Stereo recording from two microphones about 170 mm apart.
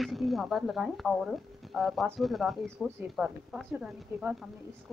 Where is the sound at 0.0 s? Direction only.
Centre (ahead or behind).